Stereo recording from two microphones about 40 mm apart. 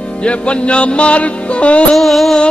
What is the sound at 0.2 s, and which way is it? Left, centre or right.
Music, left.